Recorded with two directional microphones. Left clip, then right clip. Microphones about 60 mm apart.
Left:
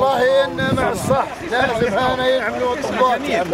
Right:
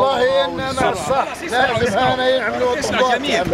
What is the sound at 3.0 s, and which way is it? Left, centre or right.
Speech, right.